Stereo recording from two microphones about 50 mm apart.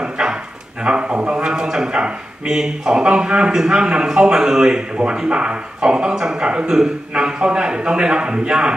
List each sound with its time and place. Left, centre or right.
0.0 s dog: centre
0.8 s a man's voice: right